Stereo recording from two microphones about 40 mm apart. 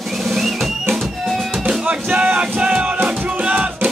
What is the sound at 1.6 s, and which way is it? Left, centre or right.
Music, centre.